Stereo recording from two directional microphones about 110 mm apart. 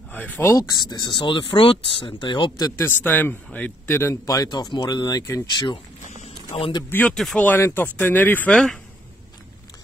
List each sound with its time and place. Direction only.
0.1 s speech: 15° left (ahead or behind)
0.6 s speech: 40° left (ahead or behind)
2.8 s speech: 15° left (ahead or behind)
6.9 s speech: 15° left (ahead or behind)